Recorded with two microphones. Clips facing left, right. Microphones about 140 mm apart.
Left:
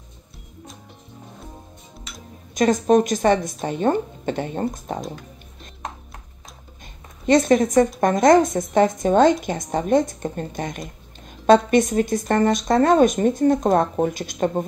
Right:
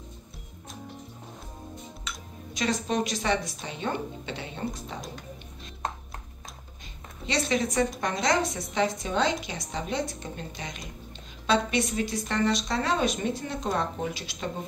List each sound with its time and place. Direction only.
2.5 s speech: 50° left (ahead or behind)
7.2 s speech: 50° left (ahead or behind)